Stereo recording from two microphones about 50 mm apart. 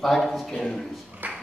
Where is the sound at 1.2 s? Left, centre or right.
Right.